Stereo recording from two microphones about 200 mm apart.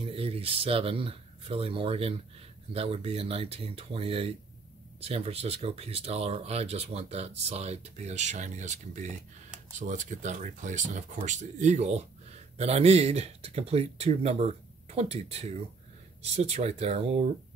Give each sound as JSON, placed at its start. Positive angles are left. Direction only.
{"t": 0.0, "sound": "speech", "side_deg": -30}